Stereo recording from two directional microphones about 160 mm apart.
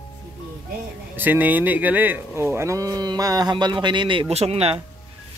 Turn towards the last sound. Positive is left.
turn(degrees=-40)  # may be behind; listen again after turning